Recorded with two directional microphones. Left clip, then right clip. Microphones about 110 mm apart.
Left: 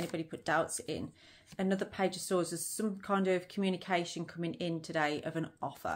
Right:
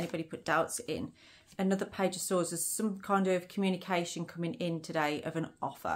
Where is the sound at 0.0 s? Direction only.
25° right (ahead or behind).